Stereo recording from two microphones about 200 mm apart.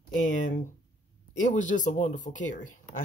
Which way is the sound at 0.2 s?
40° left (ahead or behind).